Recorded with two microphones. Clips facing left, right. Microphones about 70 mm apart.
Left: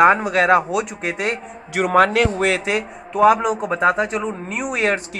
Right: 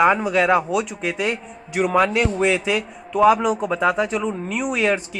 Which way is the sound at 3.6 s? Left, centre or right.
Left.